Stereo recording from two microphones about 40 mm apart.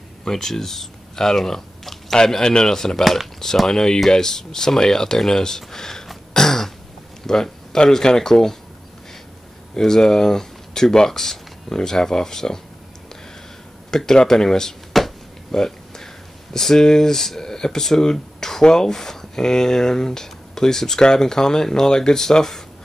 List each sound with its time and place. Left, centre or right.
0.2 s speech: centre
3.0 s speech: centre
3.5 s speech: centre
6.3 s throat clearing: centre
7.2 s speech: centre
9.8 s speech: centre
13.8 s speech: centre
15.5 s a sound: centre
16.5 s speech: centre